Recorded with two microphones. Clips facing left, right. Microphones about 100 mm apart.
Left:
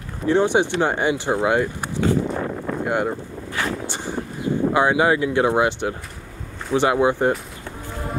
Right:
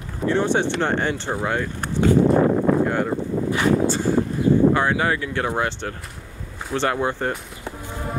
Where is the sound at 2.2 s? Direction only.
45° right (ahead or behind).